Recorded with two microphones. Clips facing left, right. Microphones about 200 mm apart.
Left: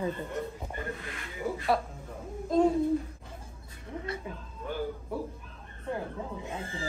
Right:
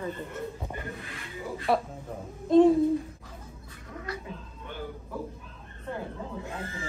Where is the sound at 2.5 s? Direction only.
Centre (ahead or behind).